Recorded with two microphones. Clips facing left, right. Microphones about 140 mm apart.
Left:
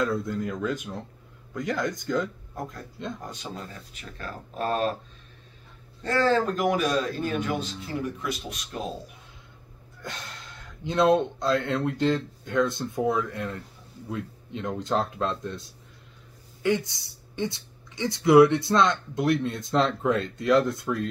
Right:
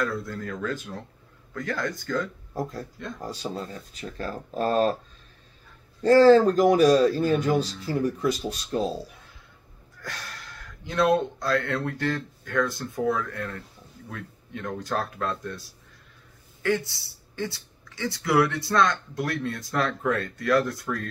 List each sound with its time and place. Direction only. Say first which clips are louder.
0.0 s speech: left 3 dB; 20° left (ahead or behind)
2.5 s speech: right 5 dB; 35° right (ahead or behind)
6.0 s speech: right 8 dB; 35° right (ahead or behind)
10.0 s speech: even; 25° left (ahead or behind)